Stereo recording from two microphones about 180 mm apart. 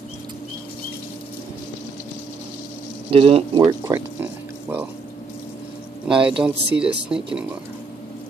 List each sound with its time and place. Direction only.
3.1 s speech: 30° right (ahead or behind)
3.6 s a sound: 15° right (ahead or behind)
6.0 s speech: 5° right (ahead or behind)